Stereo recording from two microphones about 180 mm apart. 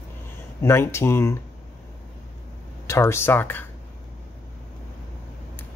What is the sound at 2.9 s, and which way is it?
Speech, 15° left (ahead or behind).